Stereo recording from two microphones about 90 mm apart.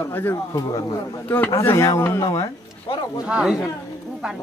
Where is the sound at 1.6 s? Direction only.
30° left (ahead or behind).